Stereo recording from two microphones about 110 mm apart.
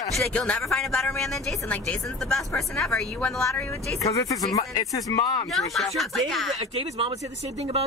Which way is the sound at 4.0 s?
30° left (ahead or behind).